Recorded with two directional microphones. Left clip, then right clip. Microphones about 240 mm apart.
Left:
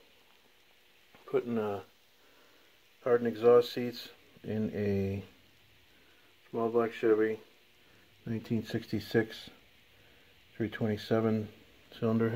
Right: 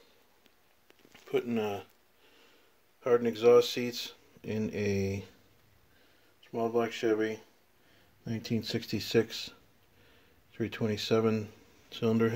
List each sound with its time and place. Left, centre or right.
1.3 s speech: centre
3.0 s speech: centre
6.5 s speech: centre
8.5 s speech: centre
10.6 s speech: centre